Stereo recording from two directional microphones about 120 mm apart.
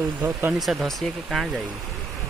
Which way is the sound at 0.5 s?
Centre (ahead or behind).